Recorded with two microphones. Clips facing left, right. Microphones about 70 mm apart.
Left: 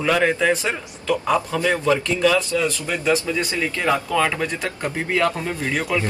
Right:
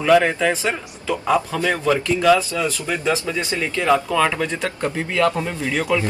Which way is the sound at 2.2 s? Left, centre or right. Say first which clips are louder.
Right 4 dB; centre.